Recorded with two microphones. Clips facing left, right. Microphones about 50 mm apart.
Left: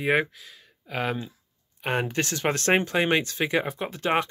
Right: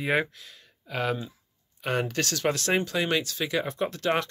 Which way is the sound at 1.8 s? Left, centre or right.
Left.